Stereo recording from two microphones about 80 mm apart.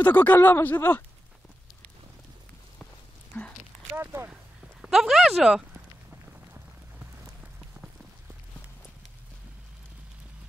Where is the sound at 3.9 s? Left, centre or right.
Right.